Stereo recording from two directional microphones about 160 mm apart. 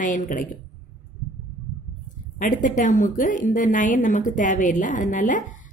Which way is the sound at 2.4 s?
60° left (ahead or behind).